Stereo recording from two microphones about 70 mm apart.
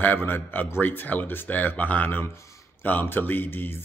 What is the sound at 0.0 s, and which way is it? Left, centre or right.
Speech, left.